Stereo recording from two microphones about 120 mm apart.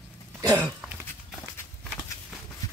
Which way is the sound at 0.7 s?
10° right (ahead or behind).